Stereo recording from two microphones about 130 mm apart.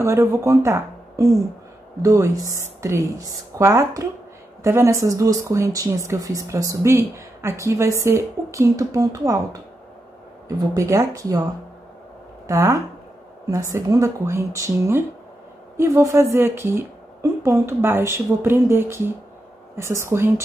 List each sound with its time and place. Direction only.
0.0 s speech: 25° right (ahead or behind)
10.7 s speech: 25° right (ahead or behind)
12.4 s speech: 25° right (ahead or behind)